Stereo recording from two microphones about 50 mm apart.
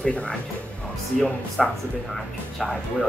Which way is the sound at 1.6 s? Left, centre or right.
Centre.